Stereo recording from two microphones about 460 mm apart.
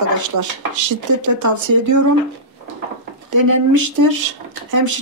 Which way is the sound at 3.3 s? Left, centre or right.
Right.